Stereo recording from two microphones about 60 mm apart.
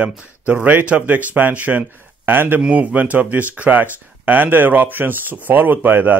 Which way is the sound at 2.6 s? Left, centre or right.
Right.